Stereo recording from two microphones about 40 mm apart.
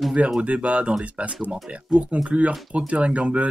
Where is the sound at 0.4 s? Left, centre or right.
Right.